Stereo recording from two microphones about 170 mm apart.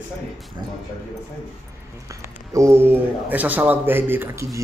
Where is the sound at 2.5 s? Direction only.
15° right (ahead or behind).